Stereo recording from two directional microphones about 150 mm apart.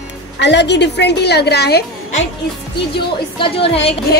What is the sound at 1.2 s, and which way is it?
Speech, 90° left.